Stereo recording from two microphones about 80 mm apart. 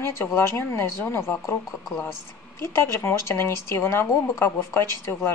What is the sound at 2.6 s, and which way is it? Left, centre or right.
A woman's voice, left.